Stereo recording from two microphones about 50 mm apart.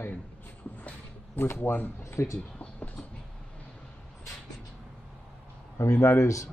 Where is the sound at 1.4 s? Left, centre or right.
Left.